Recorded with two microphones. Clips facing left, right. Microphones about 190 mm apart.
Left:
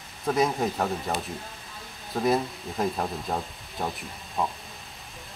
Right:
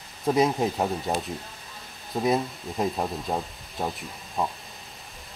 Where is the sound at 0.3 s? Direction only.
20° right (ahead or behind).